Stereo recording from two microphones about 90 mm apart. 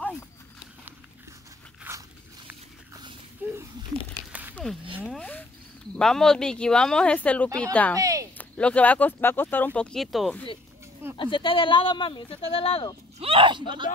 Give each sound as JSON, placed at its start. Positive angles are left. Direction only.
{"t": 1.9, "sound": "biting", "side_deg": -20}
{"t": 3.4, "sound": "a sound", "side_deg": -20}
{"t": 5.9, "sound": "speech", "side_deg": 5}
{"t": 7.4, "sound": "speech", "side_deg": -40}
{"t": 7.9, "sound": "a sound", "side_deg": -40}
{"t": 8.4, "sound": "speech", "side_deg": 15}
{"t": 11.1, "sound": "speech", "side_deg": 70}
{"t": 13.2, "sound": "speech", "side_deg": -80}